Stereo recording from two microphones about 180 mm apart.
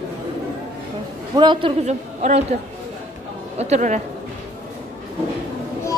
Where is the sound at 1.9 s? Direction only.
40° right (ahead or behind).